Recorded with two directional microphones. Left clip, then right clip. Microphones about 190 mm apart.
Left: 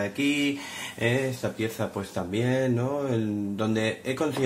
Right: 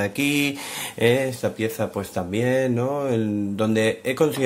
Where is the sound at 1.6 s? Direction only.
35° right (ahead or behind).